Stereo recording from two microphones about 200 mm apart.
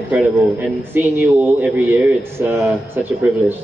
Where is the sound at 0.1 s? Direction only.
5° right (ahead or behind).